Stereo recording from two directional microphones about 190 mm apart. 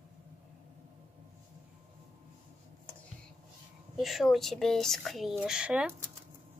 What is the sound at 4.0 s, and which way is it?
Speech, centre (ahead or behind).